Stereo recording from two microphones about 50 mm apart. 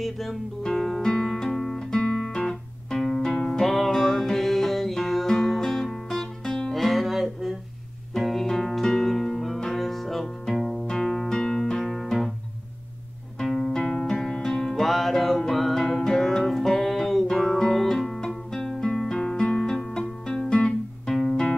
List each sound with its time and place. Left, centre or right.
0.0 s music: centre
3.6 s music: centre
6.7 s music: centre
13.5 s music: centre
13.7 s music: centre
21.1 s music: centre